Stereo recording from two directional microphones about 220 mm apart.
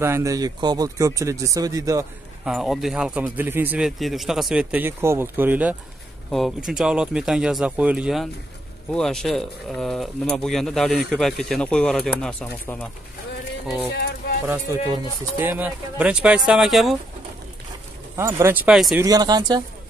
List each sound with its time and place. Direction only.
0.0 s speech: 15° right (ahead or behind)
2.4 s speech: centre (ahead or behind)
14.5 s speech: 10° right (ahead or behind)
18.1 s speech: 10° right (ahead or behind)
18.9 s speech: 15° right (ahead or behind)